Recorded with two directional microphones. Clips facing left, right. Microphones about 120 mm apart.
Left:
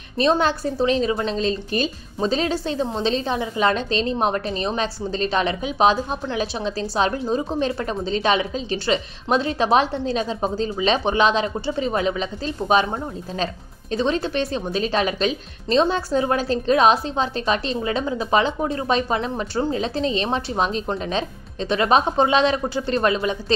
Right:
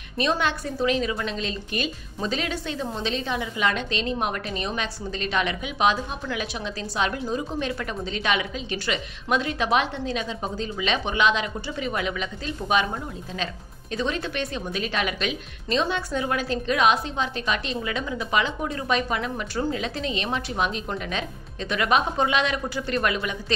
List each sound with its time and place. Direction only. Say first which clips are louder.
0.2 s a woman's voice: left 6 dB; 35° left (ahead or behind)
13.9 s a woman's voice: left 6 dB; 30° left (ahead or behind)